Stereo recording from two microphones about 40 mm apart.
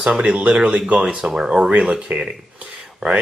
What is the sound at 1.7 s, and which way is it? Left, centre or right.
Speech, right.